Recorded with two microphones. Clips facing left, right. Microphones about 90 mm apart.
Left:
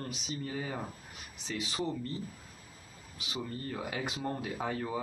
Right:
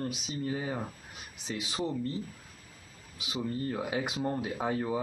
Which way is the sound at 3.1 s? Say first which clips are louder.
Right 5 dB; 15° right (ahead or behind).